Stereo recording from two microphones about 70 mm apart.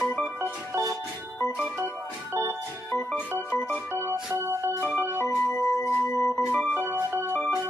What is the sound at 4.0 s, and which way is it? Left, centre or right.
Music, right.